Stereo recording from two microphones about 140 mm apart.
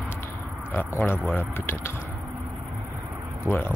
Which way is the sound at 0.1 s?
15° left (ahead or behind).